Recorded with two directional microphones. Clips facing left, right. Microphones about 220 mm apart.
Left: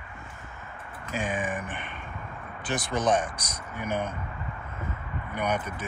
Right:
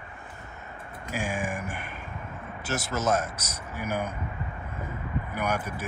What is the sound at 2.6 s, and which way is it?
Speech, centre (ahead or behind).